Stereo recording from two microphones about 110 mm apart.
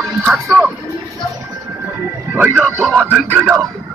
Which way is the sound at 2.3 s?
20° right (ahead or behind).